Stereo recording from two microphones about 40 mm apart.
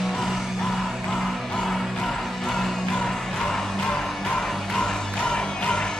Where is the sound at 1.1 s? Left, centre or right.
Centre.